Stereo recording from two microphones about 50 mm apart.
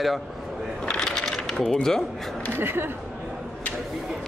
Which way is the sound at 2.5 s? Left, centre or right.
Right.